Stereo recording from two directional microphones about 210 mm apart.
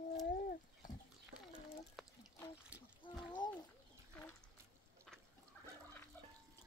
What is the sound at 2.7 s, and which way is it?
Trickle, 5° right (ahead or behind).